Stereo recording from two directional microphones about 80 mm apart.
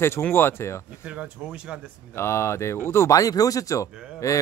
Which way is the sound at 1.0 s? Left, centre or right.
Centre.